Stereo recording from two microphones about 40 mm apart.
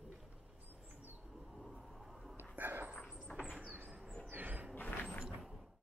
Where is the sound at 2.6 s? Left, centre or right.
Right.